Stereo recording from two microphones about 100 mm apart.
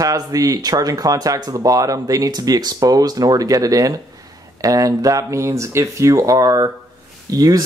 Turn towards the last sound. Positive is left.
turn(degrees=-40)  # may be behind; listen again after turning